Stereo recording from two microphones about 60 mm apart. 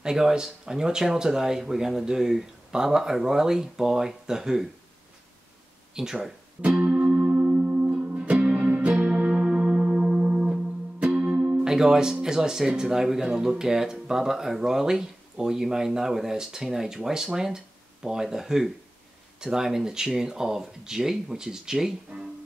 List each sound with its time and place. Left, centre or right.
0.0 s speech: centre
5.9 s speech: centre
6.8 s music: right
11.7 s speech: centre